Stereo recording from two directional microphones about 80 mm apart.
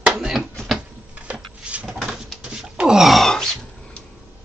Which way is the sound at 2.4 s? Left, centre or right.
Centre.